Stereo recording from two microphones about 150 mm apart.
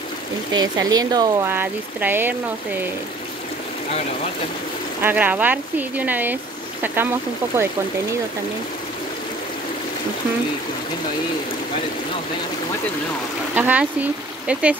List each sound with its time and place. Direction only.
0.5 s speech: 25° right (ahead or behind)
1.4 s speech: 15° right (ahead or behind)
5.0 s speech: 10° right (ahead or behind)
13.6 s speech: 10° right (ahead or behind)